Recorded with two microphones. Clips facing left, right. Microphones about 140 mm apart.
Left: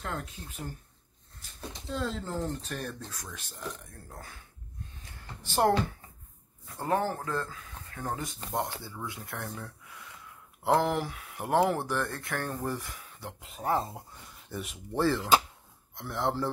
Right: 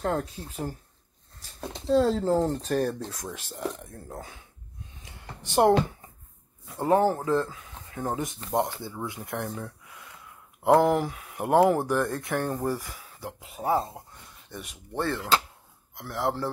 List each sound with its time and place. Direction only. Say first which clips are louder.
0.0 s speech: right 9 dB; 40° right (ahead or behind)
1.9 s speech: right 12 dB; 35° right (ahead or behind)
3.1 s speech: right 7 dB; 25° right (ahead or behind)
4.1 s speech: right 6 dB; 15° right (ahead or behind)
5.6 s speech: right 5 dB; 15° right (ahead or behind)
6.8 s speech: right 7 dB; 30° right (ahead or behind)
10.7 s speech: right 6 dB; 45° right (ahead or behind)
11.3 s speech: right 5 dB; 10° right (ahead or behind)
12.6 s speech: right 5 dB; 5° right (ahead or behind)